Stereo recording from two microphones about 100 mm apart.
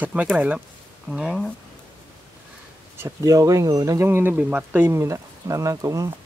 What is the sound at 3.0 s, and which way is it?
Speech, 30° right (ahead or behind).